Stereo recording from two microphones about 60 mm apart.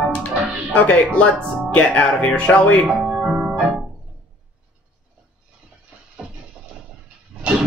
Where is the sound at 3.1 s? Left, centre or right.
Centre.